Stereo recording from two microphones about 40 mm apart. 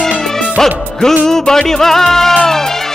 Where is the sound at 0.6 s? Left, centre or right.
Centre.